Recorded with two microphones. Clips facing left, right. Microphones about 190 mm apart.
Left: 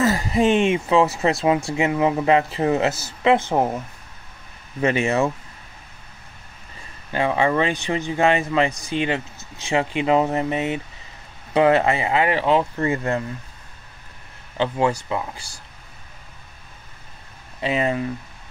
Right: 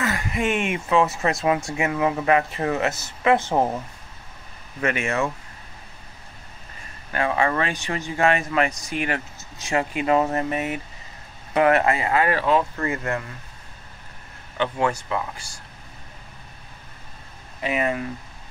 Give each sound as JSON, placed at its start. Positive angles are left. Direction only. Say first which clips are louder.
{"t": 0.0, "sound": "a sound", "louder": "left 6 dB", "side_deg": 35}
{"t": 0.8, "sound": "speech", "louder": "left 3 dB", "side_deg": 30}
{"t": 3.3, "sound": "speech", "louder": "left 1 dB", "side_deg": 15}
{"t": 4.8, "sound": "speech", "louder": "left 4 dB", "side_deg": 30}
{"t": 7.1, "sound": "speech", "louder": "left 2 dB", "side_deg": 25}
{"t": 14.6, "sound": "speech", "louder": "left 3 dB", "side_deg": 30}
{"t": 17.6, "sound": "speech", "louder": "left 2 dB", "side_deg": 30}